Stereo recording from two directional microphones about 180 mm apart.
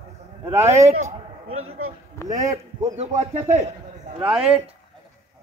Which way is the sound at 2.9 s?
40° right (ahead or behind).